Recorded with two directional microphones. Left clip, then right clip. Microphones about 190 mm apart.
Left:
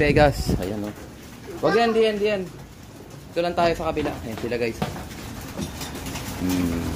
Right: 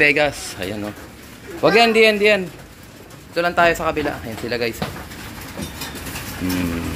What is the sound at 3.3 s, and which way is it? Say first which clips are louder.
Speech: right 5 dB; centre (ahead or behind).